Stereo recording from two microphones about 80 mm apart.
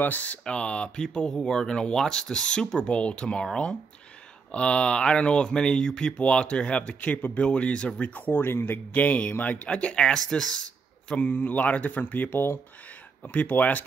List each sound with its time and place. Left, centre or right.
0.0 s speech: left